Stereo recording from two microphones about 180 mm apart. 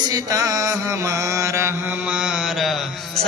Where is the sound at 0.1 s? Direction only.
20° right (ahead or behind).